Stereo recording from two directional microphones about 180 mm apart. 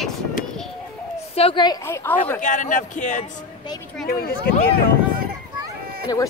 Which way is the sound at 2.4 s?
45° left (ahead or behind).